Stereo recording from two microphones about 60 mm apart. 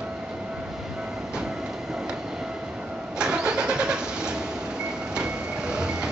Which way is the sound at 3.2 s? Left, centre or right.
Centre.